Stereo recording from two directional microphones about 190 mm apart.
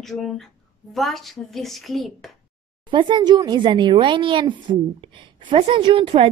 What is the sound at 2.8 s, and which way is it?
Speech, 25° right (ahead or behind).